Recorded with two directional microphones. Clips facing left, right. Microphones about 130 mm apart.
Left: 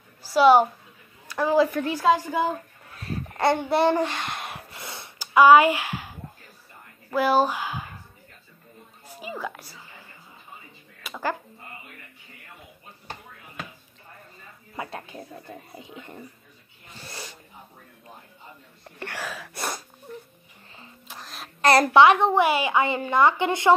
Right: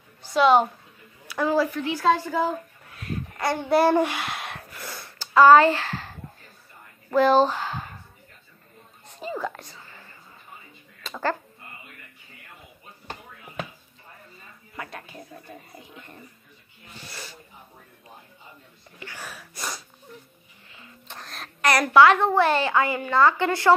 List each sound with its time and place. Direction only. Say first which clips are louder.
0.2 s a woman's voice: left 2 dB; 5° left (ahead or behind)
1.7 s a woman's voice: left 1 dB; 45° left (ahead or behind)
2.0 s a child's voice: even; 15° left (ahead or behind)
3.0 s babbling: left 4 dB; 25° left (ahead or behind)
3.6 s speech: right 2 dB; 5° right (ahead or behind)
4.6 s gasp: right 1 dB; 25° left (ahead or behind)
5.2 s speech: even; 10° left (ahead or behind)
7.2 s speech: right 3 dB; 10° left (ahead or behind)
9.0 s a sound: right 3 dB; 10° left (ahead or behind)
11.0 s a sound: right 2 dB; 10° left (ahead or behind)
14.8 s a woman's voice: left 3 dB; 25° left (ahead or behind)
18.9 s sneeze: left 6 dB; 75° left (ahead or behind); by 19.8 s 60° left (ahead or behind)
21.1 s a sound: right 1 dB; centre (ahead or behind)
21.5 s a woman's voice: left 1 dB; 30° left (ahead or behind)